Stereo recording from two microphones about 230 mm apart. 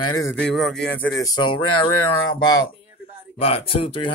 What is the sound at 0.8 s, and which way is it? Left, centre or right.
Speech, left.